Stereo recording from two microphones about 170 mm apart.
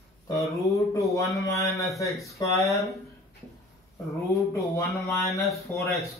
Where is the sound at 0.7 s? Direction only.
20° left (ahead or behind).